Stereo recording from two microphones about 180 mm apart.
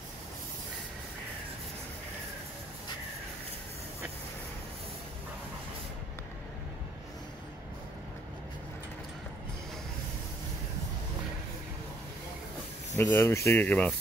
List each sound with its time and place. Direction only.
12.9 s speech: 15° left (ahead or behind)